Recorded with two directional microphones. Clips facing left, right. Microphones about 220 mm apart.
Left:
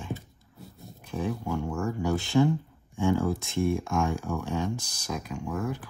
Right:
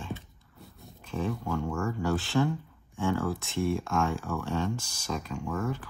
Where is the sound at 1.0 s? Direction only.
15° left (ahead or behind).